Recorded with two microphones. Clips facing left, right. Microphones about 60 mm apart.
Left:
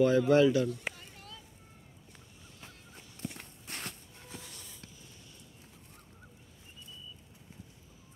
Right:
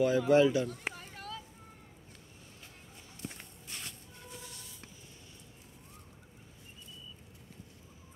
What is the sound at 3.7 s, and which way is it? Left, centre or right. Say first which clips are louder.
Shuffle: left 4 dB; left.